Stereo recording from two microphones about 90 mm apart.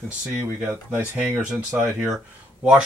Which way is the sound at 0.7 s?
20° right (ahead or behind).